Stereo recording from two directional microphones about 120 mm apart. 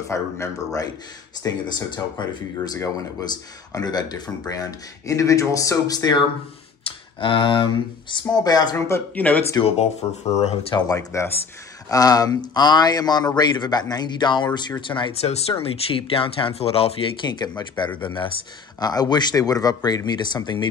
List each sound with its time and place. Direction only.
0.1 s speech: 25° left (ahead or behind)
1.4 s speech: 35° left (ahead or behind)
6.8 s speech: 45° left (ahead or behind); by 9.4 s 15° left (ahead or behind)
9.6 s speech: 55° left (ahead or behind)
10.7 s speech: 30° left (ahead or behind)
15.2 s speech: 55° left (ahead or behind)
17.2 s speech: 35° left (ahead or behind)